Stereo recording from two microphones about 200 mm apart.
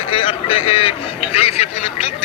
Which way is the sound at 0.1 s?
25° left (ahead or behind).